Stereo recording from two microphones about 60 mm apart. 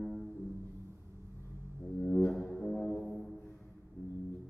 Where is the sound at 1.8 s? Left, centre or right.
Left.